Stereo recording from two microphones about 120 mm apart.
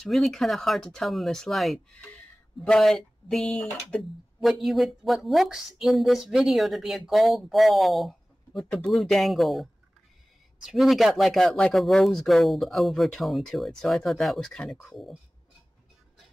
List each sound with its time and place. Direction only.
0.0 s speech: centre (ahead or behind)
2.0 s a sound: 15° left (ahead or behind)
2.8 s speech: centre (ahead or behind)